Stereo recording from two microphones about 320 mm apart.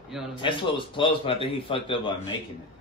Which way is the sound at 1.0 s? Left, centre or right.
Centre.